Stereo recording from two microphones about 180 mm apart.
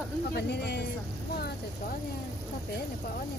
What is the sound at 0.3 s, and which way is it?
Speech, 65° left (ahead or behind).